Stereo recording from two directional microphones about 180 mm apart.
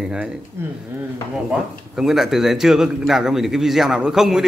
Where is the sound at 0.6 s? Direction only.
15° right (ahead or behind).